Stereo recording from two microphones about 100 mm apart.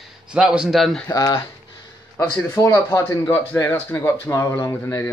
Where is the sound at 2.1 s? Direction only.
25° left (ahead or behind).